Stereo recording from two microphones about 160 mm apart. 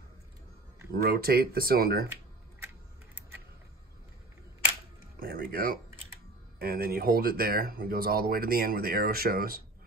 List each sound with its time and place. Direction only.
0.9 s speech: 70° right (ahead or behind)
5.2 s speech: 70° right (ahead or behind)